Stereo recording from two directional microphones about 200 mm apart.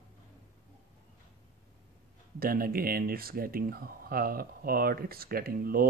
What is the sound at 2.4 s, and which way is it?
Speech, 45° right (ahead or behind).